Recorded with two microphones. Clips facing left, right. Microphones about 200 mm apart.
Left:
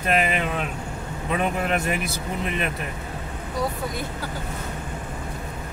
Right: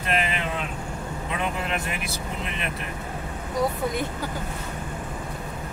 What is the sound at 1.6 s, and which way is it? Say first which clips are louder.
Speech: left 5 dB; 50° left (ahead or behind).